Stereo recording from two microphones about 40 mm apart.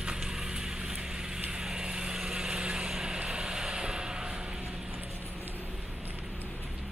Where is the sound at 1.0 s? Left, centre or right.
Centre.